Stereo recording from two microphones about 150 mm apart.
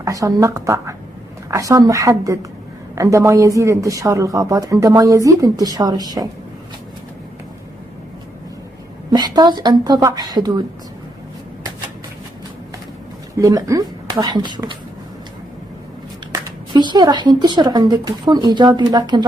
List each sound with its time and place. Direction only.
0.0 s speech: 20° right (ahead or behind)
9.1 s speech: 30° right (ahead or behind)
13.3 s speech: 20° right (ahead or behind)
16.3 s speech: 30° right (ahead or behind)